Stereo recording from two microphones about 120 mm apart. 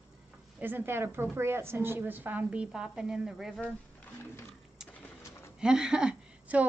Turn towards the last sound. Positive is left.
turn(degrees=-5)  # may be behind; listen again after turning